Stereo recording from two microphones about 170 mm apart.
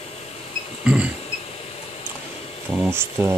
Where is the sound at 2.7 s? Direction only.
15° right (ahead or behind).